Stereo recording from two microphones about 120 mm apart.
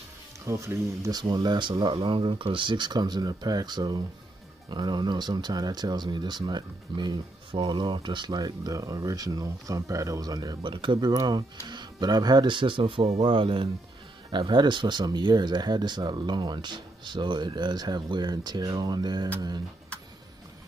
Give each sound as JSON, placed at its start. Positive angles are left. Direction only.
{"t": 0.5, "sound": "speech", "side_deg": -25}
{"t": 1.2, "sound": "speech", "side_deg": -35}
{"t": 10.6, "sound": "speech", "side_deg": -45}
{"t": 11.1, "sound": "speech", "side_deg": -30}